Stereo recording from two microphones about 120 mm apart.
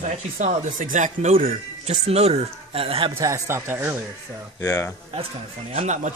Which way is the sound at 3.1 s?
25° right (ahead or behind).